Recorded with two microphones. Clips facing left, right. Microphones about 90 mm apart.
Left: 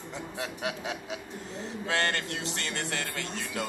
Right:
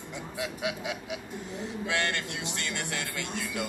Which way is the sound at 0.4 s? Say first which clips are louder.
Right 2 dB; 40° left (ahead or behind).